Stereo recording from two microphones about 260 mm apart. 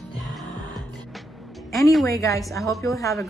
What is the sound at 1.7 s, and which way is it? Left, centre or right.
Speech, centre.